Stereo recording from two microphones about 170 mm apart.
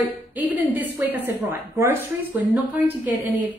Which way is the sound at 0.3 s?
10° right (ahead or behind).